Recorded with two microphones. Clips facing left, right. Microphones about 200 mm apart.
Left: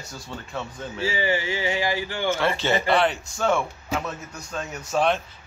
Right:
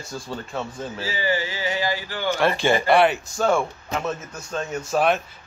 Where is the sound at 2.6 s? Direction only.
10° right (ahead or behind).